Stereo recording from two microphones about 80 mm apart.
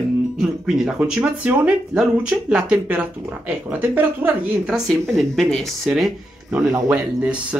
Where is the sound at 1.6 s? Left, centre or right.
Centre.